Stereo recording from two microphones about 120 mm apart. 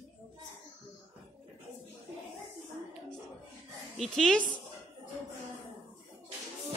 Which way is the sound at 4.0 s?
5° left (ahead or behind).